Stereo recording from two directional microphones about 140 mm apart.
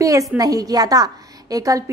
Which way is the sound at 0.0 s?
25° right (ahead or behind).